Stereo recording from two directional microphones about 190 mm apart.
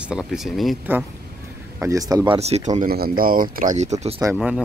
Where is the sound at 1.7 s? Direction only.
15° right (ahead or behind); by 2.9 s 40° right (ahead or behind).